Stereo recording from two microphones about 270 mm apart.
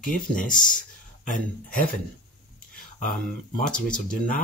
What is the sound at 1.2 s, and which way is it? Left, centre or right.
Speech, left.